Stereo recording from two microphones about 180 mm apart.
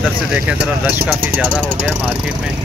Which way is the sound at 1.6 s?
5° left (ahead or behind).